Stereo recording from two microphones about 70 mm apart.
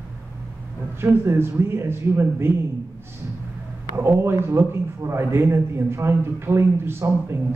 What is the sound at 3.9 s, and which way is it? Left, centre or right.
A man's voice, right.